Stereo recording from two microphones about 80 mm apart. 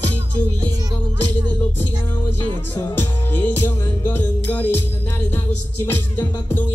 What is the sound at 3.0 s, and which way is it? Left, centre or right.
Music, left.